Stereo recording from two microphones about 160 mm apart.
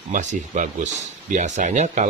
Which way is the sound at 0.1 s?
50° right (ahead or behind).